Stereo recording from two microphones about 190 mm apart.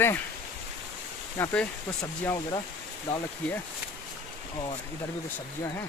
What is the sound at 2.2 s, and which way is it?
Speech, 20° left (ahead or behind).